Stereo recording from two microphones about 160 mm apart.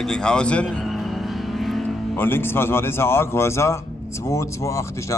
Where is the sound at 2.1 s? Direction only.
15° left (ahead or behind).